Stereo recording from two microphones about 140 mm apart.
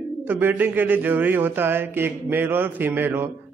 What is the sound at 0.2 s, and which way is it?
Speech, 15° right (ahead or behind).